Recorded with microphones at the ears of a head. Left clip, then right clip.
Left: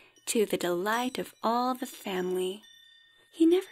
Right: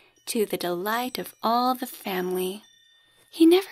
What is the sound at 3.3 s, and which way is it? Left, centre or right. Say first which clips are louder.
Speech: right 6 dB; right.